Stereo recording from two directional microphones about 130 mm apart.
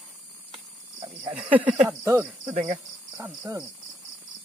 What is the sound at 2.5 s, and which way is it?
Cricket, 80° right.